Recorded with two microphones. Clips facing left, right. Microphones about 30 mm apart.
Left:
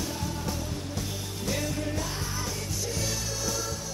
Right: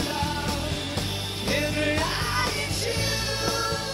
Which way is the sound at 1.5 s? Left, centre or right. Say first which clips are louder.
Right 5 dB; right.